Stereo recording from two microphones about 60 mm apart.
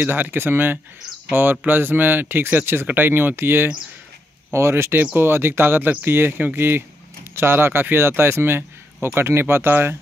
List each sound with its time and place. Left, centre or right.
0.0 s speech: right
4.9 s speech: right